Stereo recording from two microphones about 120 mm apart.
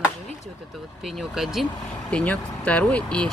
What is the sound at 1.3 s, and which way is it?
Speech, centre (ahead or behind).